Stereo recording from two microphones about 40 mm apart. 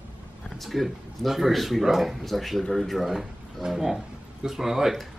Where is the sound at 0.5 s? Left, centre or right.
Centre.